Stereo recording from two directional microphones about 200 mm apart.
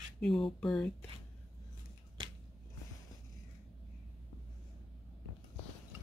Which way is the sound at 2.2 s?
25° right (ahead or behind).